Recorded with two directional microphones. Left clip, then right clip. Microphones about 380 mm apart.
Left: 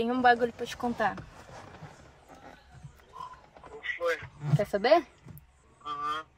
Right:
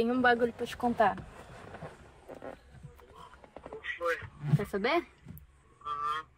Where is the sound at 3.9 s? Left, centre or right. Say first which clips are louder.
Left 2 dB; centre.